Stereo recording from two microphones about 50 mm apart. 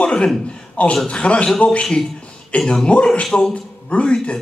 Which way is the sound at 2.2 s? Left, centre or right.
Left.